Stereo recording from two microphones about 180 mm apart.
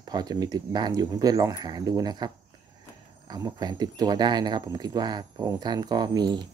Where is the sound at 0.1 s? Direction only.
25° right (ahead or behind).